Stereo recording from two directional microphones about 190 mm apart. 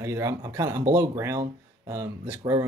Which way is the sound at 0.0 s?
15° right (ahead or behind).